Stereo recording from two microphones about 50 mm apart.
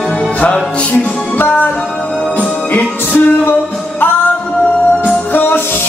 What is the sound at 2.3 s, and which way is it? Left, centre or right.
Music, left.